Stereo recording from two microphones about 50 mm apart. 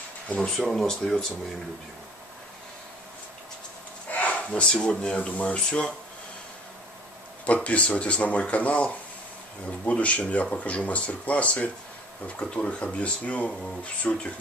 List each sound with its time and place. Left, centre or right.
0.4 s speech: centre
4.1 s a sound: left
4.5 s speech: centre
7.4 s speech: left